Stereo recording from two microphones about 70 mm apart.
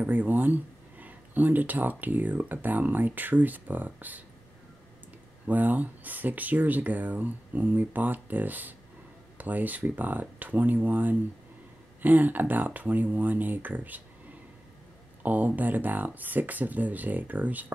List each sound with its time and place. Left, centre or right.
0.0 s speech: right
5.5 s speech: right
15.2 s speech: right